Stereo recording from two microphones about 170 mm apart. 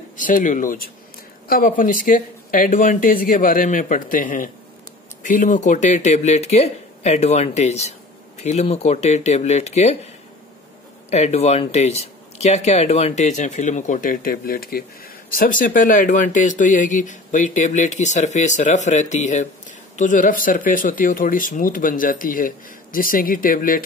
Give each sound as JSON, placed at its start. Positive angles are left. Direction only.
{"t": 0.2, "sound": "speech", "side_deg": 50}
{"t": 11.1, "sound": "speech", "side_deg": 40}